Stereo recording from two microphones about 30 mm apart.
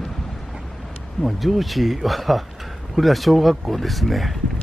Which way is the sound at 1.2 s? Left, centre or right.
Centre.